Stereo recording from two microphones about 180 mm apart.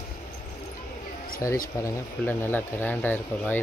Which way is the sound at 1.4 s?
15° left (ahead or behind).